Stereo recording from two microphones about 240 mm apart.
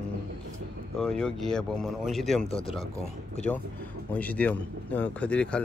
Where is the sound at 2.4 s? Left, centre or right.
Left.